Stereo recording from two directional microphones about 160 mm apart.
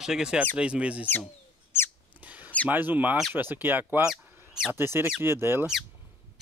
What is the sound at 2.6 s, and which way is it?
Speech, 10° right (ahead or behind).